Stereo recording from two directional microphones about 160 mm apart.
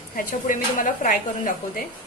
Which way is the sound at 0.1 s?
60° left (ahead or behind).